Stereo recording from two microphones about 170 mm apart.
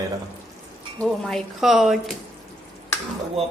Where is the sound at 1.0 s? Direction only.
5° left (ahead or behind).